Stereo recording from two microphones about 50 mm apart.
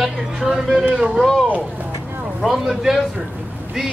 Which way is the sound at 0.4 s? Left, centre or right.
Centre.